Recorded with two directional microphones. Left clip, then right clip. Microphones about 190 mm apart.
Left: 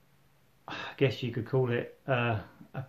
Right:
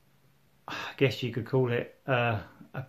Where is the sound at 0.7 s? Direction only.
15° right (ahead or behind).